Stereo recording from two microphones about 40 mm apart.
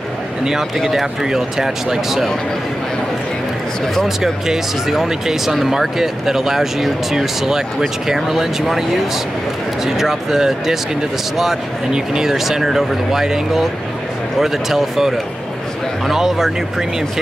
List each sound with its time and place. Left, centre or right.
0.8 s speech: centre
4.2 s speech: centre
11.9 s speech: centre
12.3 s speech: centre